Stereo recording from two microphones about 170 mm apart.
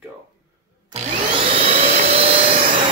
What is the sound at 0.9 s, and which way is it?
Vacuum cleaner, 35° right (ahead or behind).